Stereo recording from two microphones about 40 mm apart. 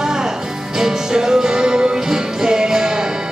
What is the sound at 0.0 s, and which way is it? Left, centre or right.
Music, centre.